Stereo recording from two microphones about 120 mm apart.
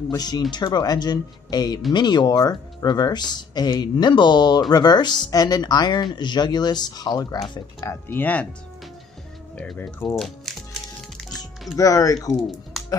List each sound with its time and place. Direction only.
0.1 s speech: 35° left (ahead or behind)
7.8 s speech: 20° left (ahead or behind)
9.8 s speech: 15° left (ahead or behind)
10.0 s music: 5° left (ahead or behind)
11.7 s speech: 30° left (ahead or behind)
12.7 s music: centre (ahead or behind)